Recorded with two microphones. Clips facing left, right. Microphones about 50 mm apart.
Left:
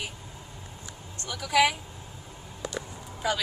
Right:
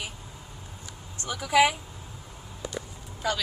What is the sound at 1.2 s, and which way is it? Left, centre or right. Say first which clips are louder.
Speech: right 2 dB; centre.